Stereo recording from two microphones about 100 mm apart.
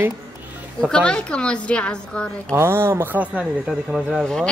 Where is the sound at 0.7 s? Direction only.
5° left (ahead or behind).